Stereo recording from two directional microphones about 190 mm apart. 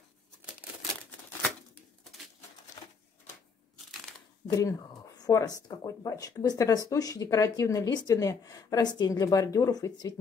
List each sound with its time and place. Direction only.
4.5 s speech: 20° left (ahead or behind)